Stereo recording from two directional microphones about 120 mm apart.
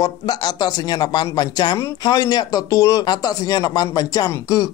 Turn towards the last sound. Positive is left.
turn(degrees=30)  # may be behind; listen again after turning